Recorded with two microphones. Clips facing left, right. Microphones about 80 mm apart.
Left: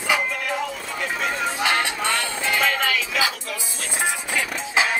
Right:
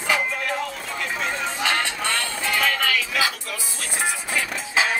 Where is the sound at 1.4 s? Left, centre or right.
Centre.